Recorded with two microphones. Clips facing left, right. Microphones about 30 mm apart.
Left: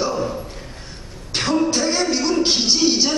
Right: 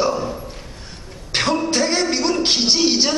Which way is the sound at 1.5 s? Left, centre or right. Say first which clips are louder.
Left 1 dB; right.